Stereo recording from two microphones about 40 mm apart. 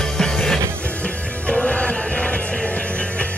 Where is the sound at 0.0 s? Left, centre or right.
Centre.